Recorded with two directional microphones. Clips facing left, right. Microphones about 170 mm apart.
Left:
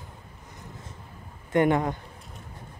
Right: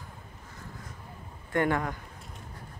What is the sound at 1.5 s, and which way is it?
Speech, 20° left (ahead or behind).